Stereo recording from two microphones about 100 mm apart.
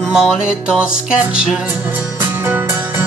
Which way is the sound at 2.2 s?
20° right (ahead or behind).